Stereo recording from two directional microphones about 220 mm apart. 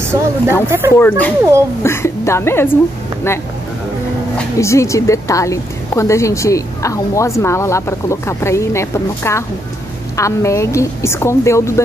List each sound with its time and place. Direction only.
0.1 s speech: 15° right (ahead or behind)
0.9 s a woman's voice: 10° left (ahead or behind)